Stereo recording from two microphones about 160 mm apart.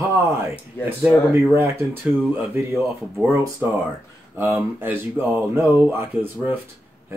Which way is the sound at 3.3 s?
15° right (ahead or behind).